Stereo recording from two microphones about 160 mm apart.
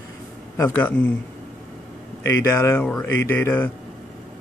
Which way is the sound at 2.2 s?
15° left (ahead or behind).